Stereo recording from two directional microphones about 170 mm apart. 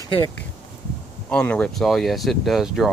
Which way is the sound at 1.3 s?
5° left (ahead or behind).